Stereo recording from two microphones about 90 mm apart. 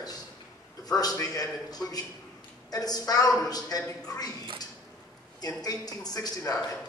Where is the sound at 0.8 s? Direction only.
45° left (ahead or behind).